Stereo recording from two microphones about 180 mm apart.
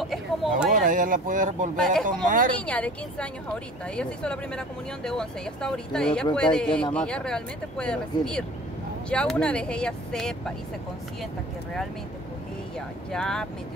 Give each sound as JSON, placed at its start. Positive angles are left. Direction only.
{"t": 0.0, "sound": "a sound", "side_deg": 0}
{"t": 0.7, "sound": "speech", "side_deg": -50}
{"t": 2.5, "sound": "a woman's voice", "side_deg": 10}
{"t": 13.1, "sound": "a woman's voice", "side_deg": 5}